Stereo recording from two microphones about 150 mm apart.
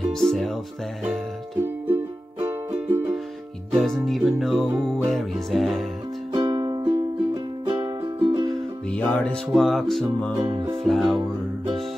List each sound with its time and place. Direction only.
0.1 s music: 5° left (ahead or behind)
1.9 s music: 15° right (ahead or behind)
3.7 s music: centre (ahead or behind)
6.3 s music: 30° right (ahead or behind)
8.5 s music: 5° left (ahead or behind)